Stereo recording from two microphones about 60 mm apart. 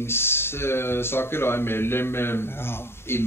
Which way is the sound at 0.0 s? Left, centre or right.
Left.